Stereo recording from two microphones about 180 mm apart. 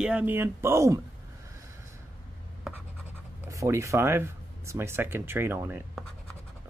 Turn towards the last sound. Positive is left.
turn(degrees=-10)  # may be behind; listen again after turning